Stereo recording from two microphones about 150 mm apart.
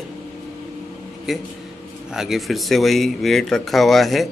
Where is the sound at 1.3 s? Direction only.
Centre (ahead or behind).